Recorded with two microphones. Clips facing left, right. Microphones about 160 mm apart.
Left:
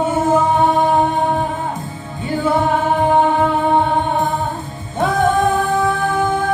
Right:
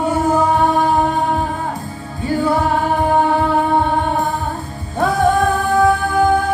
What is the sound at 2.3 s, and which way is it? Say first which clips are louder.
Music: even; 20° left (ahead or behind).